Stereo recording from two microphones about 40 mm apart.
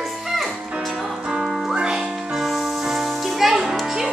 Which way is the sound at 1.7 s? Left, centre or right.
Right.